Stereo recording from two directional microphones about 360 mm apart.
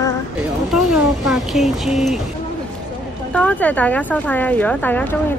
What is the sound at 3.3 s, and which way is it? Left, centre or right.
Speech, centre.